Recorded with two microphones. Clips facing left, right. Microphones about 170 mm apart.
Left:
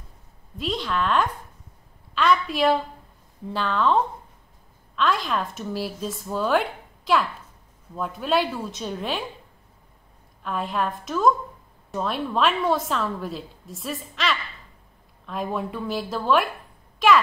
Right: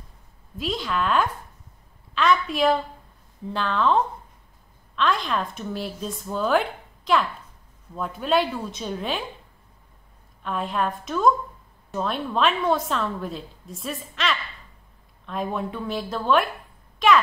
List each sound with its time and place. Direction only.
0.6 s a woman's voice: centre (ahead or behind)
10.4 s a woman's voice: centre (ahead or behind)